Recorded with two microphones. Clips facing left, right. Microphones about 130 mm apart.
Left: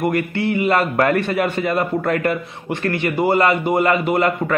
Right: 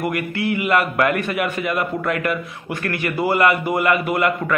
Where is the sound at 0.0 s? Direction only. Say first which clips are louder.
Left 3 dB; 25° left (ahead or behind).